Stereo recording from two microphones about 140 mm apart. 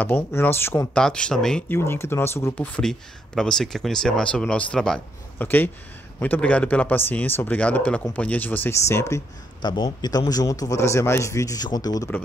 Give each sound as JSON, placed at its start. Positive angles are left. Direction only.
{"t": 0.0, "sound": "speech", "side_deg": 15}
{"t": 0.9, "sound": "speech", "side_deg": 5}
{"t": 1.7, "sound": "speech", "side_deg": 20}
{"t": 2.6, "sound": "speech", "side_deg": 5}